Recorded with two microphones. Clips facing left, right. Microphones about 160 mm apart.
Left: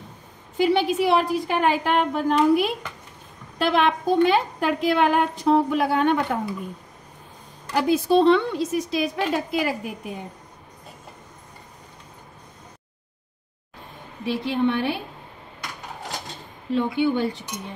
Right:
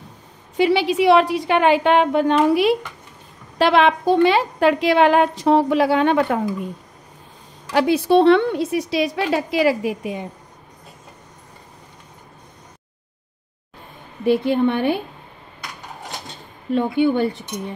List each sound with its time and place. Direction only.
0.6 s a woman's voice: 80° right
7.7 s a woman's voice: 75° right (ahead or behind)
14.2 s a woman's voice: 55° right (ahead or behind)
16.7 s speech: 55° right (ahead or behind)